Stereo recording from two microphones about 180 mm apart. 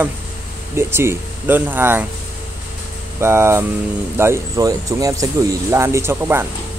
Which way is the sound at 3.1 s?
15° right (ahead or behind).